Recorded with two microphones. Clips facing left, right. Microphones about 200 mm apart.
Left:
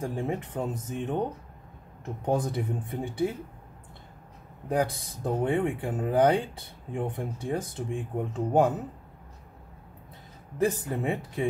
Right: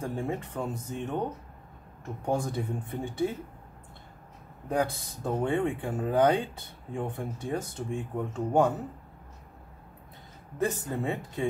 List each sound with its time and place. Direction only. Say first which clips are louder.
0.0 s speech: left 1 dB; 15° left (ahead or behind)
2.2 s speech: left 2 dB; 20° left (ahead or behind)
4.8 s speech: left 2 dB; 15° left (ahead or behind)
10.6 s speech: left 3 dB; 15° left (ahead or behind)